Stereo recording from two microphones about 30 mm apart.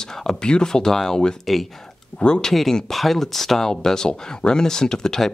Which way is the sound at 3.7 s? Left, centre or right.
Left.